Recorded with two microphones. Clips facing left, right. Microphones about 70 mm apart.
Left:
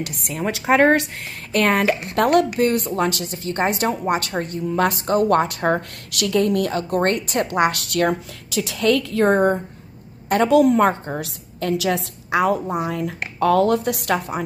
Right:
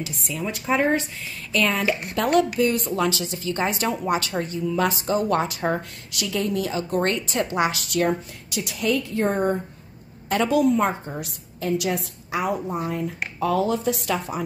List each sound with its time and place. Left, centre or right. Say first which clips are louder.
0.0 s a woman's voice: left 3 dB; left
0.5 s a woman's voice: left 6 dB; left
1.5 s a woman's voice: left 4 dB; left
7.2 s a woman's voice: left 3 dB; left
7.9 s a woman's voice: left 2 dB; left